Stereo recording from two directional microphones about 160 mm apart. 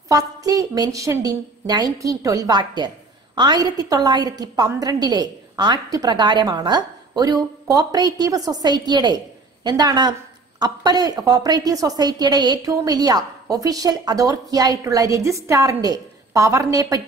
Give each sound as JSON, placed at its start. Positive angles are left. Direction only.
{"t": 0.1, "sound": "a woman's voice", "side_deg": -20}